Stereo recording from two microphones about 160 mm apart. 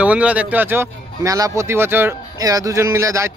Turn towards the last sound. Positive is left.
turn(degrees=-20)  # may be behind; listen again after turning